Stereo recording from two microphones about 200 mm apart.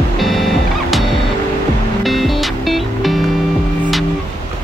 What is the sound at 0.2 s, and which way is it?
Music, centre (ahead or behind).